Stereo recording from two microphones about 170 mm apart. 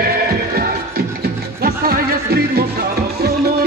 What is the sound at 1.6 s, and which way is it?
Music, 65° right (ahead or behind).